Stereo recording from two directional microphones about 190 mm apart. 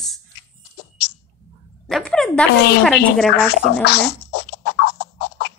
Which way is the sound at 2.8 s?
Centre (ahead or behind).